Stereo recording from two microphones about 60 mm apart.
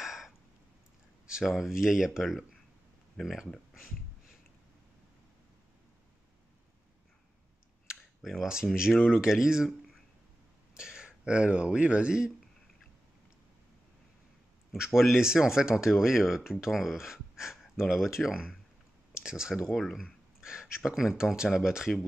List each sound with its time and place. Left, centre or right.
0.0 s a sound: centre
1.4 s speech: centre
8.2 s speech: centre
10.8 s speech: centre
14.7 s speech: centre
19.7 s speech: centre
20.0 s speech: centre